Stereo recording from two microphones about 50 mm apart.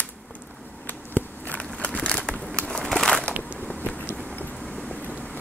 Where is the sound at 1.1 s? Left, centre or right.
Left.